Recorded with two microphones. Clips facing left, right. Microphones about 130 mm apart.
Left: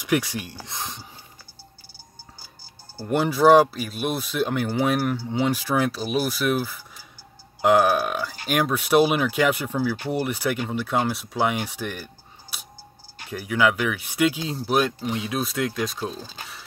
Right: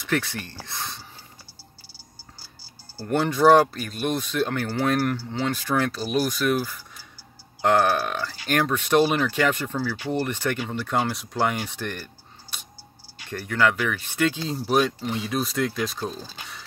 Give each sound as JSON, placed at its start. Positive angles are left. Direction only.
{"t": 0.0, "sound": "speech", "side_deg": 10}
{"t": 3.0, "sound": "speech", "side_deg": 10}